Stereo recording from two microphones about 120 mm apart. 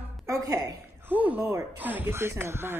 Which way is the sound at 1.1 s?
15° right (ahead or behind).